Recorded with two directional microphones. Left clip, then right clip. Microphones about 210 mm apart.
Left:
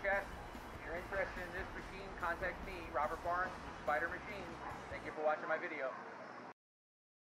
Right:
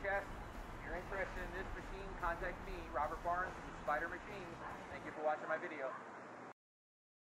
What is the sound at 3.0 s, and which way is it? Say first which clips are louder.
Speech: left 1 dB; 5° left (ahead or behind).